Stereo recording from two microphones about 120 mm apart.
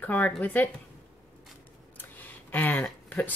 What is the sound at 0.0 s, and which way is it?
Speech, 15° left (ahead or behind).